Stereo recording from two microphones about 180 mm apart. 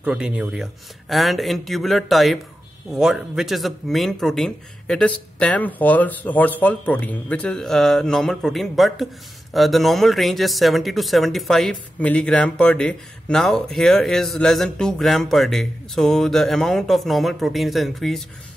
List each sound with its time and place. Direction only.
0.0 s speech: 5° right (ahead or behind)